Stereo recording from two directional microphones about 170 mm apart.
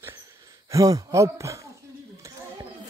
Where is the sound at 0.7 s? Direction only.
20° right (ahead or behind).